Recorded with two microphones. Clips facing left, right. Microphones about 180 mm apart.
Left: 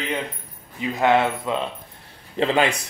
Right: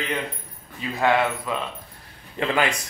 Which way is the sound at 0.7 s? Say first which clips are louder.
Left 2 dB; 20° left (ahead or behind).